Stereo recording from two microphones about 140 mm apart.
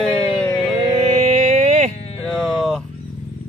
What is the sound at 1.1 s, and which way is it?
Music, 55° right (ahead or behind).